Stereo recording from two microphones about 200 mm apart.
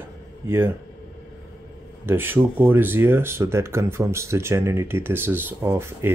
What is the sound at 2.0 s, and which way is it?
Speech, 10° right (ahead or behind).